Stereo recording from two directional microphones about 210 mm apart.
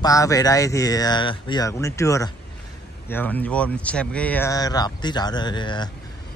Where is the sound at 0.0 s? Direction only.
15° left (ahead or behind).